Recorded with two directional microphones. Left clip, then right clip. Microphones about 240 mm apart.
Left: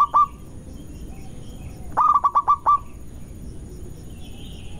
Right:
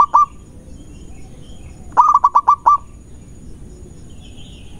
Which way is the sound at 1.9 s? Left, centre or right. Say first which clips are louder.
Right 6 dB; centre.